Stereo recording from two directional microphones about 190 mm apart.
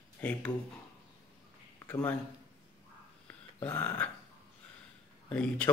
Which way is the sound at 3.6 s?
10° left (ahead or behind).